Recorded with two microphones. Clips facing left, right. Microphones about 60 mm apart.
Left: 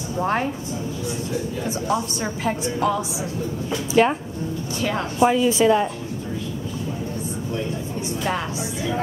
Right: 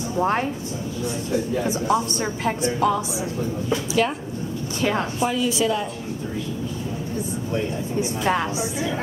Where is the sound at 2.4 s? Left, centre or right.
Centre.